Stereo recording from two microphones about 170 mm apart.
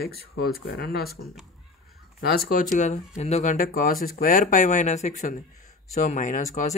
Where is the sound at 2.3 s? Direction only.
50° left (ahead or behind).